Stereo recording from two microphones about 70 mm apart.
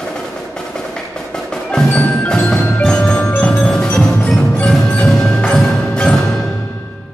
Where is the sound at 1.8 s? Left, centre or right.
Centre.